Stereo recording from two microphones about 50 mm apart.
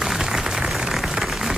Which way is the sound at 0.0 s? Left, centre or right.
Centre.